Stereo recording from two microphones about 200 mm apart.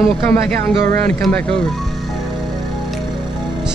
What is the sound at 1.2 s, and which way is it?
Speech, 5° left (ahead or behind).